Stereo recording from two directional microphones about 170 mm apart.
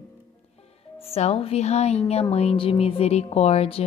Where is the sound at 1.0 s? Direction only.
35° left (ahead or behind).